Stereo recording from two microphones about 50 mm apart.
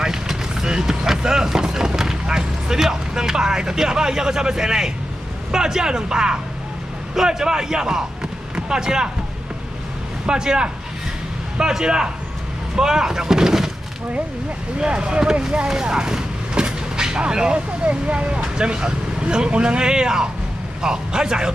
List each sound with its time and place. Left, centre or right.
0.0 s vehicle: centre
5.5 s speech: centre
10.2 s speech: centre
14.8 s speech: centre